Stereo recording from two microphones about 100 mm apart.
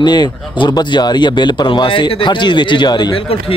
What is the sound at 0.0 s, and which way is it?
Speech, 45° left (ahead or behind).